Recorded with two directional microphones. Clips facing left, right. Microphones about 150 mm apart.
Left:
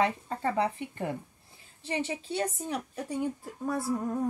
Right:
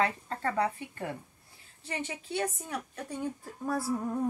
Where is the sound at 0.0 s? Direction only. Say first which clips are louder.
Left 2 dB; 15° left (ahead or behind).